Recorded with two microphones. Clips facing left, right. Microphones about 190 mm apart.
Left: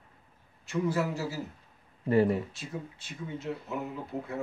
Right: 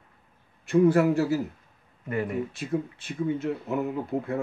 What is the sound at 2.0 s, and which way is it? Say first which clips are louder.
Speech: left 5 dB; 30° left (ahead or behind).